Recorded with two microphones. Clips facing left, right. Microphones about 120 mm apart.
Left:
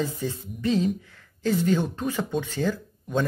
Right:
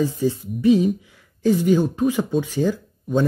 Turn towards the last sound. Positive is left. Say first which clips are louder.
# right 6 dB
turn(degrees=-10)  # may be behind; listen again after turning